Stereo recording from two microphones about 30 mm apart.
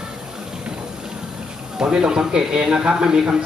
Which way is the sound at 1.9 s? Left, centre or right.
Right.